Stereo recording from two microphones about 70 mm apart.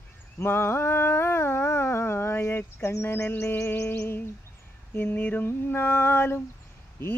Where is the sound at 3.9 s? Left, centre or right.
Left.